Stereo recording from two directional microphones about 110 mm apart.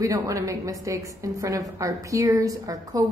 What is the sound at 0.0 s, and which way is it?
A woman's voice, 30° right (ahead or behind).